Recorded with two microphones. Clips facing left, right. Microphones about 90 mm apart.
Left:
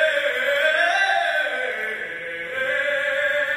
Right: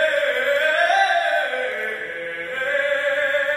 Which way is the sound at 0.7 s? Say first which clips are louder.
Right 1 dB; centre (ahead or behind).